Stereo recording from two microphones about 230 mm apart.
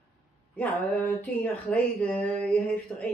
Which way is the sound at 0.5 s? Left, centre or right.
Centre.